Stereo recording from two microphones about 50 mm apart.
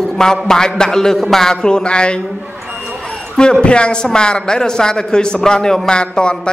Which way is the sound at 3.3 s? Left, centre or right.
Centre.